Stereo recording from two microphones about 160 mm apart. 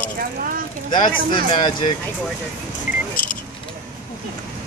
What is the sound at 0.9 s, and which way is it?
Speech, 30° left (ahead or behind).